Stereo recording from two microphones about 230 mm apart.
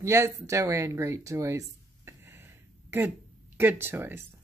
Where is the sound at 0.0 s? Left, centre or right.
Centre.